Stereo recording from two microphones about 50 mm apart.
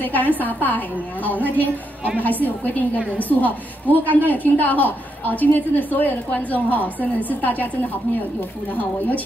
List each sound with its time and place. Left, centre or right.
0.0 s a woman's voice: left
8.7 s a woman's voice: left